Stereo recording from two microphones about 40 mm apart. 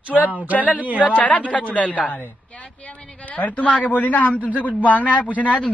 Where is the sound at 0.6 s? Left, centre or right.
Left.